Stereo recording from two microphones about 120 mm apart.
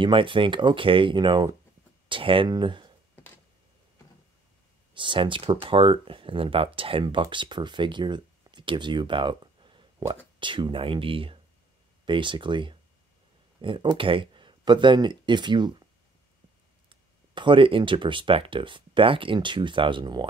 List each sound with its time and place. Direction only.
0.0 s speech: 45° right (ahead or behind)
4.9 s speech: 45° right (ahead or behind)
16.9 s speech: 40° right (ahead or behind)